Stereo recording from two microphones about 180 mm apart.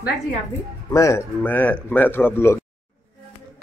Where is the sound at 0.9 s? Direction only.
15° left (ahead or behind).